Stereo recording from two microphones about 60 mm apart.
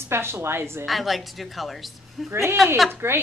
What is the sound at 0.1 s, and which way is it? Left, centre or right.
Speech, right.